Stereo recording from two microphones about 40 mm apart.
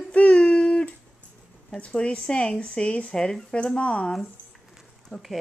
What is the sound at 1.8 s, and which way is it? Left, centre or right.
Speech, left.